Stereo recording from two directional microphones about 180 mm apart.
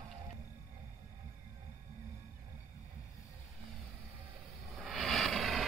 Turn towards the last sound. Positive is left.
turn(degrees=0)  # may be behind; listen again after turning